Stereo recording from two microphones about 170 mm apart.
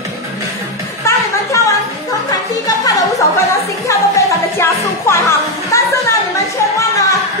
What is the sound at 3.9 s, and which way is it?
Music, 20° left (ahead or behind).